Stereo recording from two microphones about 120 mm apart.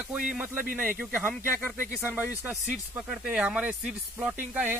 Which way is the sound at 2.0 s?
15° right (ahead or behind).